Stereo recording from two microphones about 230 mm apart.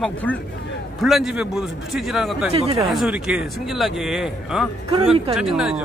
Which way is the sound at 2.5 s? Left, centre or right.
Right.